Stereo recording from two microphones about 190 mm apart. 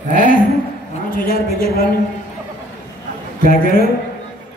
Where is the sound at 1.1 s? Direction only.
50° left (ahead or behind).